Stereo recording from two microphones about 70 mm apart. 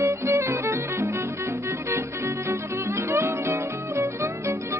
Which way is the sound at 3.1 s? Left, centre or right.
Right.